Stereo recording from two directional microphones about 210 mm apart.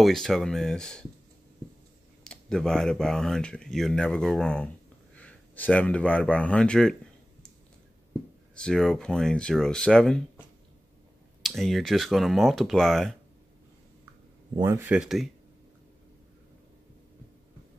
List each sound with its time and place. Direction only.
0.0 s speech: centre (ahead or behind)
2.2 s speech: 5° left (ahead or behind)
8.5 s speech: 5° left (ahead or behind)
11.4 s speech: centre (ahead or behind)
14.5 s speech: 20° right (ahead or behind)
14.9 s speech: 5° right (ahead or behind)